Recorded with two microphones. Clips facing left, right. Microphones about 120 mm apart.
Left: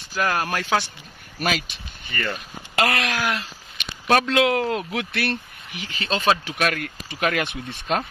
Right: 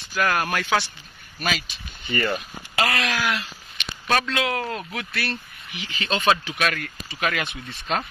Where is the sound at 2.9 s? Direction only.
55° left (ahead or behind).